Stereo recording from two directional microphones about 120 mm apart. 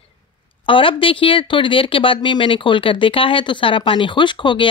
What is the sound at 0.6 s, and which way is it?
Speech, 45° left (ahead or behind).